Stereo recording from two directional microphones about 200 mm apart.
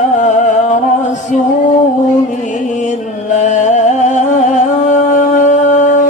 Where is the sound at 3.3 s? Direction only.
35° left (ahead or behind).